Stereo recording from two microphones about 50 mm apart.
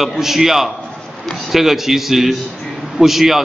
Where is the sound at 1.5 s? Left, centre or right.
Centre.